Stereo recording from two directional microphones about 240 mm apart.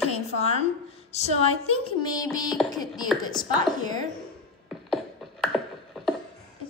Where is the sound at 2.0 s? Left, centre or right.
Centre.